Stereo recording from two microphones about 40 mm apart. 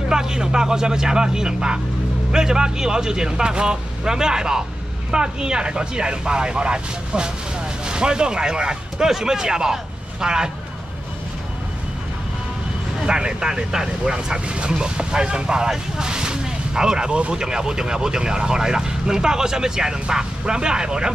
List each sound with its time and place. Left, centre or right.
0.1 s speech: centre
13.0 s speech: centre